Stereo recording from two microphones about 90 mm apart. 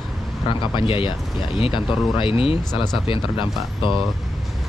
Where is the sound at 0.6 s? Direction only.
70° left (ahead or behind).